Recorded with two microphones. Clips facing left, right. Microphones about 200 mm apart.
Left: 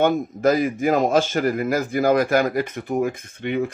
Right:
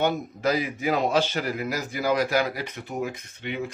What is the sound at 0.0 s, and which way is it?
Speech, 50° left (ahead or behind).